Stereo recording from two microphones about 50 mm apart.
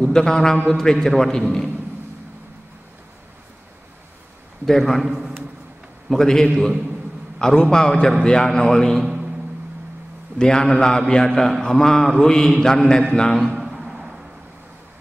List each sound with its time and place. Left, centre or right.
0.0 s a man's voice: centre
4.6 s a man's voice: centre
6.0 s a man's voice: centre
9.0 s a sound: centre
10.4 s a man's voice: centre
13.6 s a sound: centre